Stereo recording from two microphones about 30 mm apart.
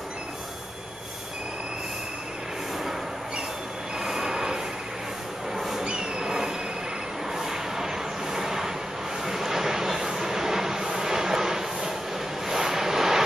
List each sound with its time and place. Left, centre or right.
4.0 s train: centre
5.6 s a sound: centre
5.9 s train: right
7.3 s vehicle: centre